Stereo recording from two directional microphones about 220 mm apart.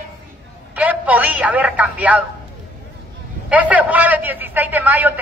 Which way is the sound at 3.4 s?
5° right (ahead or behind).